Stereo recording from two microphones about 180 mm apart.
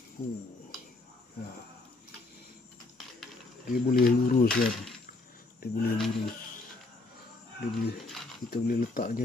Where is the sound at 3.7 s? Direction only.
55° left (ahead or behind).